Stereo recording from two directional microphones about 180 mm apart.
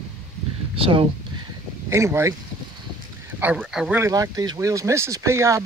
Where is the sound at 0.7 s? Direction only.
30° right (ahead or behind).